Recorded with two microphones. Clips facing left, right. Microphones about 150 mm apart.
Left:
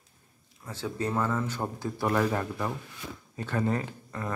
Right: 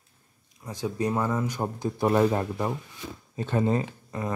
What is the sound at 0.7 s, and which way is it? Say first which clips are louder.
Speech: right 4 dB; 15° right (ahead or behind).